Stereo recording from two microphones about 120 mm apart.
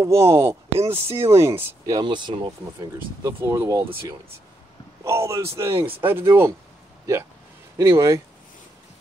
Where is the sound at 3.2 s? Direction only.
25° right (ahead or behind).